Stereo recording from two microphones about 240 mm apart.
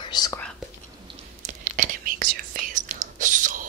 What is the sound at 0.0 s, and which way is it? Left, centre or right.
Speech, centre.